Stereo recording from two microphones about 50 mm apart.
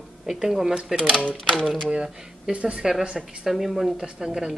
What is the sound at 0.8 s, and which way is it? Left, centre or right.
Speech, centre.